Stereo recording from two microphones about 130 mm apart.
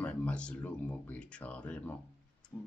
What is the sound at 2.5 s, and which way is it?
Tick-tock, 25° left (ahead or behind).